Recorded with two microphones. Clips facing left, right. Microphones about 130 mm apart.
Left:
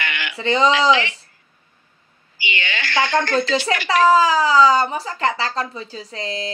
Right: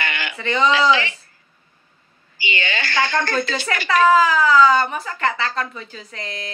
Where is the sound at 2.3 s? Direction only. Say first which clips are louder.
Right 1 dB; 35° right (ahead or behind).